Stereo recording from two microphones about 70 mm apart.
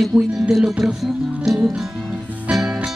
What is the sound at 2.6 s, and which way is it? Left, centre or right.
Music, centre.